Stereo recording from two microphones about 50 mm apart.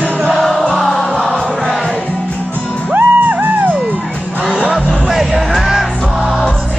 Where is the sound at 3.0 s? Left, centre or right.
Right.